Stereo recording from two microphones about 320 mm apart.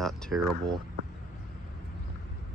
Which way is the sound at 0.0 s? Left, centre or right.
Centre.